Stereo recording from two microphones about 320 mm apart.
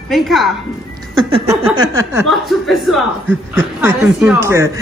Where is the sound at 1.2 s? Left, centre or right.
Centre.